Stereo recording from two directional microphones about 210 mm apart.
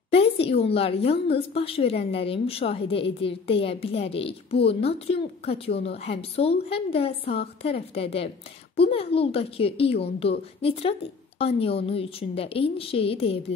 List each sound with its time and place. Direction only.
0.1 s a woman's voice: 25° left (ahead or behind)